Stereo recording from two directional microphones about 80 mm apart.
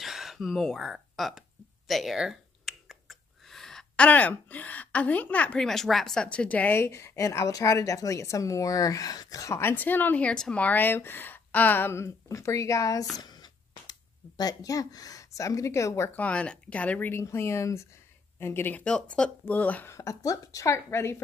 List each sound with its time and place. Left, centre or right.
0.0 s speech: centre
1.9 s a sound: centre
5.7 s a woman's voice: centre
6.2 s speech: centre
6.8 s speech: left
9.6 s speech: left
13.1 s a sound: left
16.2 s speech: centre
17.1 s speech: left
18.9 s speech: centre
19.9 s speech: left